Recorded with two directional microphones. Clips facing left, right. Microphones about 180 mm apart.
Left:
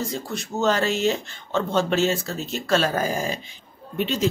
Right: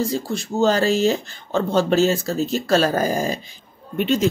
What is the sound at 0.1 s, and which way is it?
Speech, 30° right (ahead or behind).